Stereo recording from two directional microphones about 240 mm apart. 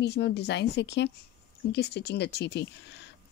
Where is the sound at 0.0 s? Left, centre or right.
Left.